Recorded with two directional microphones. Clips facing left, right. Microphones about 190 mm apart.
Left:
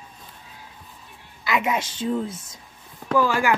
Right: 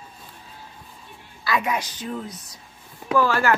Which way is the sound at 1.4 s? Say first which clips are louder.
Left 1 dB; 20° left (ahead or behind).